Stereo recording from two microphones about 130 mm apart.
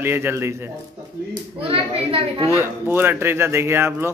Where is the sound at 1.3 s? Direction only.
45° right (ahead or behind).